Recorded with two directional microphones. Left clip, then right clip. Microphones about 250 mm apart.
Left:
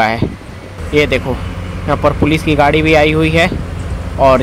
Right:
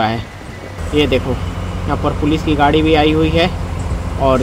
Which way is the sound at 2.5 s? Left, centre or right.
Left.